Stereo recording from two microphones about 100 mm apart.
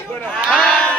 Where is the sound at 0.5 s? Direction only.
10° left (ahead or behind).